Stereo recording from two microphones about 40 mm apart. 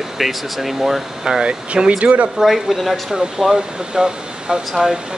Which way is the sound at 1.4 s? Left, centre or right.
Right.